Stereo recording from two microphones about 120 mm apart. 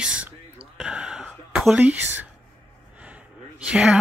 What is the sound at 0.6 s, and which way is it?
Whispering, 5° right (ahead or behind).